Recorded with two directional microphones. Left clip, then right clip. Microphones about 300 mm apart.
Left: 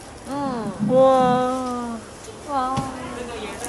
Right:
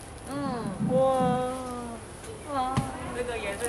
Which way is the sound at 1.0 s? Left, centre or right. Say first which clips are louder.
Left 9 dB; left.